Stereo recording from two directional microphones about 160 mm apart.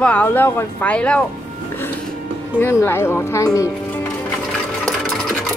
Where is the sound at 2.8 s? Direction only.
15° left (ahead or behind).